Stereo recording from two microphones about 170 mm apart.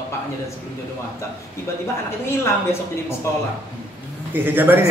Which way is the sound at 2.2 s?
15° left (ahead or behind).